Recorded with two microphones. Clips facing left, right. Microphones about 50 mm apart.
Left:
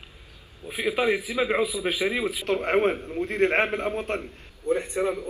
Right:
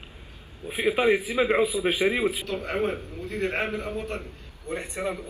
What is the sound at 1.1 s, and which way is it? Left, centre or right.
A man's voice, right.